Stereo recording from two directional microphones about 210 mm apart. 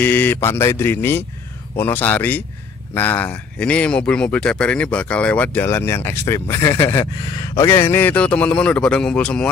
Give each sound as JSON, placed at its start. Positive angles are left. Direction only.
{"t": 0.0, "sound": "speech", "side_deg": 10}